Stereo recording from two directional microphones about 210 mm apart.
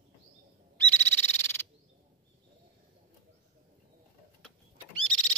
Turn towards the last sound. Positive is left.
turn(degrees=5)  # may be behind; listen again after turning